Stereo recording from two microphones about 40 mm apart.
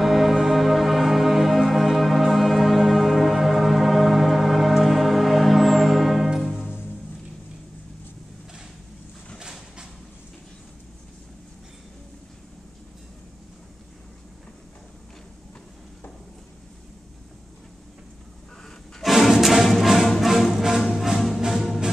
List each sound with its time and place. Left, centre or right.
0.0 s music: centre
9.4 s a sound: centre
19.0 s music: centre